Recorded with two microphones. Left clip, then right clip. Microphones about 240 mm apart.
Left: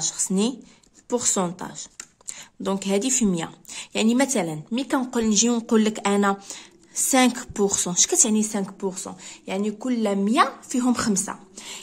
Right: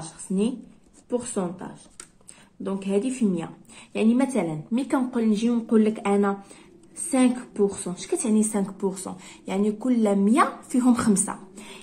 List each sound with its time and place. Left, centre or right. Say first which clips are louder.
1.1 s a woman's voice: left 4 dB; left
8.4 s speech: right 1 dB; left